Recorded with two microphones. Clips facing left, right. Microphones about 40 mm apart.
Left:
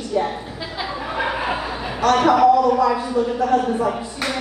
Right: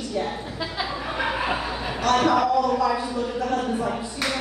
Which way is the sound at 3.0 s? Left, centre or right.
Centre.